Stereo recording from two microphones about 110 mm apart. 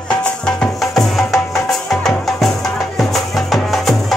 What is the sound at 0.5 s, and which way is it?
Music, 5° left (ahead or behind).